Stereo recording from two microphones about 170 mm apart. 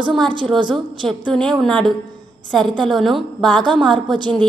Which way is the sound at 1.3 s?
5° left (ahead or behind).